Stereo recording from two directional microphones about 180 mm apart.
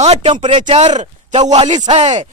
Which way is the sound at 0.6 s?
40° right (ahead or behind).